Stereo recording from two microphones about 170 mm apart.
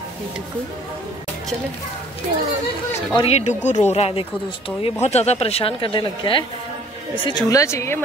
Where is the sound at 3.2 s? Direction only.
40° left (ahead or behind); by 8.0 s 15° left (ahead or behind).